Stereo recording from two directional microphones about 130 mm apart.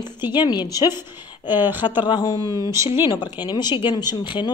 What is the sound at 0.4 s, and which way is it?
Speech, 35° left (ahead or behind).